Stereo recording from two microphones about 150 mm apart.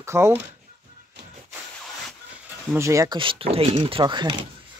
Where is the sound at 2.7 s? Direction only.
20° right (ahead or behind).